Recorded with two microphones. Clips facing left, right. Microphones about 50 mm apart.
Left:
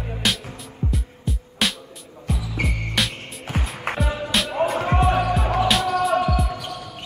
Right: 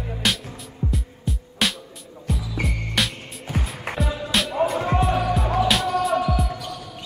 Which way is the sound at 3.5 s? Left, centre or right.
Left.